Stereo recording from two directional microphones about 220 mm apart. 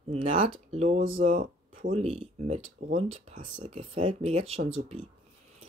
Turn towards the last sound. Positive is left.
turn(degrees=-30)  # may be behind; listen again after turning